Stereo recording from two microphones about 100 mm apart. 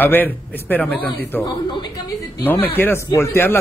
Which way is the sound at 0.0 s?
20° left (ahead or behind).